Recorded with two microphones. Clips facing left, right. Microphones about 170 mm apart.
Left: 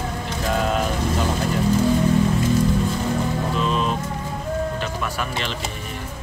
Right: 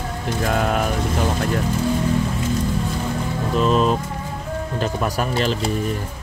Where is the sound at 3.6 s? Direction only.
40° right (ahead or behind).